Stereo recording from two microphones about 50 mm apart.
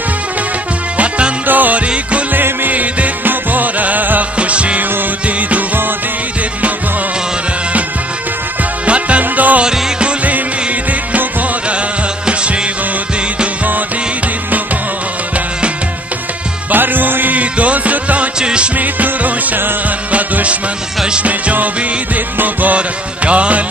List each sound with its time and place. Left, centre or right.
0.9 s music: right
1.5 s music: right
4.4 s music: right
8.8 s music: right
16.7 s music: right; by 18.7 s centre
18.8 s music: right
22.8 s music: right